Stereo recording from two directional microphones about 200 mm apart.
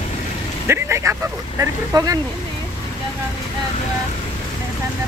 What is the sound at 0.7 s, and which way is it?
Speech, 15° right (ahead or behind).